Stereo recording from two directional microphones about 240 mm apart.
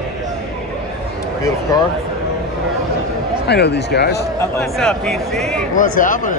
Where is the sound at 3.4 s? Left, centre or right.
Left.